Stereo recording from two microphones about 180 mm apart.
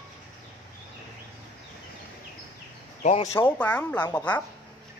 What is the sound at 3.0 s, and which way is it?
Speech, 40° left (ahead or behind).